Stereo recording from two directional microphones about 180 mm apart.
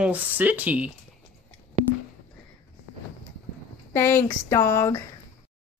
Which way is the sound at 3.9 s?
15° left (ahead or behind).